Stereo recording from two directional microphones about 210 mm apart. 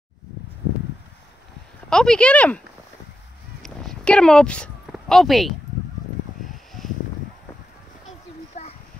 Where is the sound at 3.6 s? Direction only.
5° left (ahead or behind).